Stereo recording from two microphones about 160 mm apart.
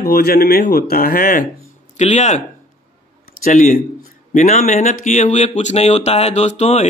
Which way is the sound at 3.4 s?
50° left (ahead or behind).